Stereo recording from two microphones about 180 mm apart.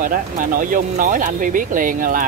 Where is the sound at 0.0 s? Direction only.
50° right (ahead or behind).